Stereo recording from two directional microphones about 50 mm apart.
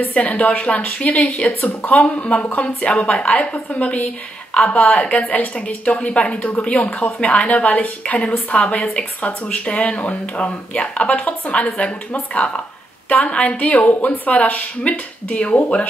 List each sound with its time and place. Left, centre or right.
0.1 s a woman's voice: left
5.9 s a woman's voice: centre